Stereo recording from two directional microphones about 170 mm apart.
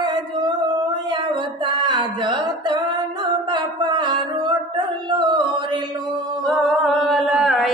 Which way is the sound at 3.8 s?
25° right (ahead or behind).